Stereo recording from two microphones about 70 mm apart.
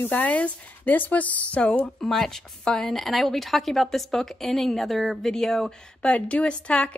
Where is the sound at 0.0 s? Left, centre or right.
Left; by 5.7 s centre.